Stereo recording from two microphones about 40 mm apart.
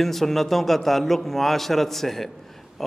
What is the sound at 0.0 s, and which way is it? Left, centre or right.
A man's voice, centre.